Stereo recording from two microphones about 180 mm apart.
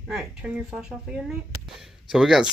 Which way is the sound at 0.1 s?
5° right (ahead or behind).